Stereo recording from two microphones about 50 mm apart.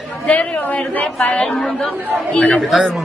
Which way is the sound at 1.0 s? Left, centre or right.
Left.